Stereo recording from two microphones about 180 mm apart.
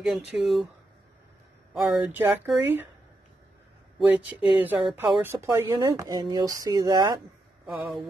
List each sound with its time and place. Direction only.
0.0 s speech: centre (ahead or behind)
1.7 s speech: 5° right (ahead or behind)
4.1 s speech: 10° right (ahead or behind)
7.6 s speech: centre (ahead or behind)